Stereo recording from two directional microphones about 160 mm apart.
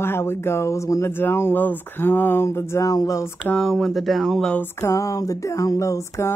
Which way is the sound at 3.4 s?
5° left (ahead or behind).